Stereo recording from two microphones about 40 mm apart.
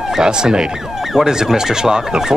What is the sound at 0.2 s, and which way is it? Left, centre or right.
Speech, centre.